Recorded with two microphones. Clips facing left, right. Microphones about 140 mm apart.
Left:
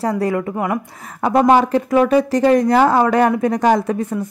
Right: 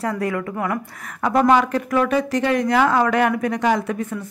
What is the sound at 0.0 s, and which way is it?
A woman's voice, 30° left (ahead or behind).